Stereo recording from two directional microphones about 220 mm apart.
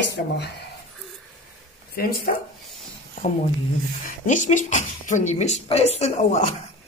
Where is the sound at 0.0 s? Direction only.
55° left (ahead or behind).